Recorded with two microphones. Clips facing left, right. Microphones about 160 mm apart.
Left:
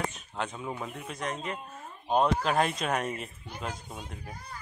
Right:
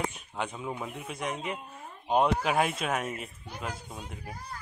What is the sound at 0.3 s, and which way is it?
Speech, 5° right (ahead or behind).